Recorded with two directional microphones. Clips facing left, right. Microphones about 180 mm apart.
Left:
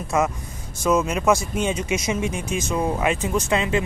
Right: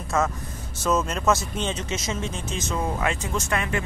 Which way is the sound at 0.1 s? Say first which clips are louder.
Left 2 dB; 15° left (ahead or behind).